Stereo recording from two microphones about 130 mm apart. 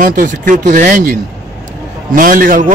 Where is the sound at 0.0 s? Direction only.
90° right.